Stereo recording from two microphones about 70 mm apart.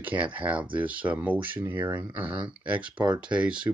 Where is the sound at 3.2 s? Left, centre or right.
Centre.